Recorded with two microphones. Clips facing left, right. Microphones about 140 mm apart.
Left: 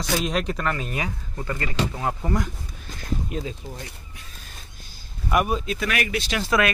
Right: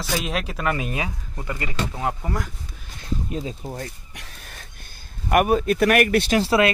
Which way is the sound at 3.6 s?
55° right (ahead or behind).